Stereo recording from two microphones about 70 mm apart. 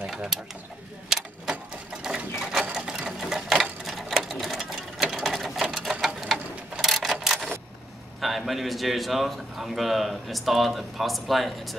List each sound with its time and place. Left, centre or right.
0.1 s mechanisms: centre
1.1 s vehicle: centre
2.0 s sewing machine: centre
6.8 s a sound: centre
8.2 s a man's voice: centre